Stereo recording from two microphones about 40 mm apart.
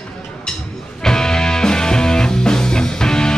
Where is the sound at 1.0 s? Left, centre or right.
Centre.